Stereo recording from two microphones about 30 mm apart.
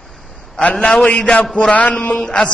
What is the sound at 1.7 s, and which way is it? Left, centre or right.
Speech, left.